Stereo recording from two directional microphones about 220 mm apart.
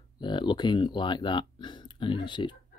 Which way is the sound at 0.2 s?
20° left (ahead or behind).